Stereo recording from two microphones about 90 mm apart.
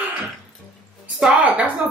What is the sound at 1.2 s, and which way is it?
Speech, 10° right (ahead or behind).